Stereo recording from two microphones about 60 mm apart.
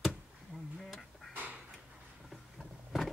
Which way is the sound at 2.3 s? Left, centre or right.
Centre.